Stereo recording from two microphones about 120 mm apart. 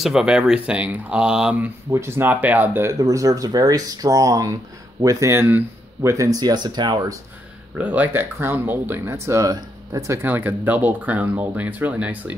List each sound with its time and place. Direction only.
0.0 s speech: 5° right (ahead or behind)
1.9 s speech: 20° right (ahead or behind); by 7.2 s 35° right (ahead or behind)
7.7 s speech: 15° right (ahead or behind)